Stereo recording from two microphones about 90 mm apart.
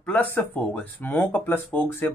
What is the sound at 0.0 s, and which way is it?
Speech, 20° left (ahead or behind).